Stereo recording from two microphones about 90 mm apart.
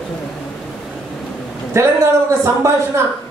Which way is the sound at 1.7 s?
30° right (ahead or behind).